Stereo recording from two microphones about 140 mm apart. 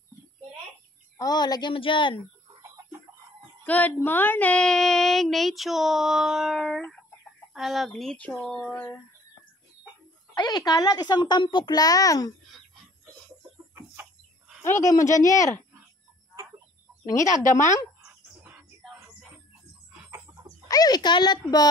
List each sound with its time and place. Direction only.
1.1 s speech: 30° left (ahead or behind)
3.6 s a sound: 10° left (ahead or behind)
10.3 s a child's voice: 30° left (ahead or behind)
14.6 s a child's voice: 20° left (ahead or behind)
20.6 s a child's voice: 25° left (ahead or behind)